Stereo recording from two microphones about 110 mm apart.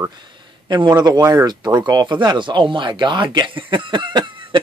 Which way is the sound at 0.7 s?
40° right (ahead or behind).